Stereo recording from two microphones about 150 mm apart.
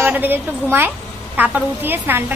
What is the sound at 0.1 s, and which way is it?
A woman's voice, 15° right (ahead or behind).